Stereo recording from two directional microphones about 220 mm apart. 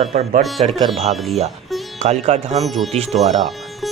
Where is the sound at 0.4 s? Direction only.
Centre (ahead or behind).